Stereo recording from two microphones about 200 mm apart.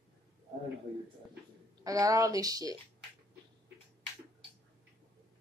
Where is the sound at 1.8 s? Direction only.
15° right (ahead or behind).